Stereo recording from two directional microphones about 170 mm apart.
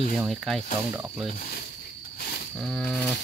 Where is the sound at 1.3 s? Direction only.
60° left (ahead or behind).